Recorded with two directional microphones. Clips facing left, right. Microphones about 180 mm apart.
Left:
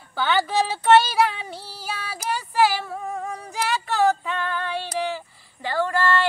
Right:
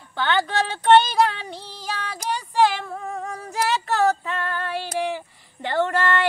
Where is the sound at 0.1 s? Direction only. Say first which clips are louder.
Left 1 dB; 5° left (ahead or behind).